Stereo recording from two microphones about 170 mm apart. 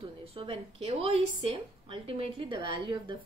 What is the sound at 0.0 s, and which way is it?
A woman's voice, 35° right (ahead or behind).